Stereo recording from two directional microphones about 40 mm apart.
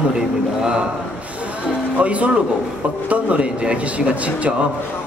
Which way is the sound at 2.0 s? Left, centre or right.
Right.